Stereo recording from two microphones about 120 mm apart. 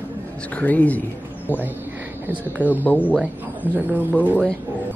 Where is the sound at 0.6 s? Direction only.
15° left (ahead or behind).